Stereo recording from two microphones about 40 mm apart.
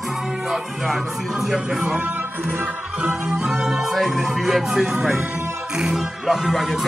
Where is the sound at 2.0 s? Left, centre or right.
Right.